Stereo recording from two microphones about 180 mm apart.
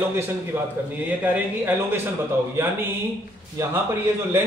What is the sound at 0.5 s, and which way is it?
Speech, 10° right (ahead or behind).